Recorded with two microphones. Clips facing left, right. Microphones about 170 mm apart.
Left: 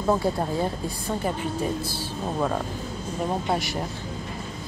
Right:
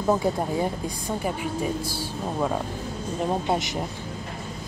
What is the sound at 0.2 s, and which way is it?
A woman's voice, 15° right (ahead or behind).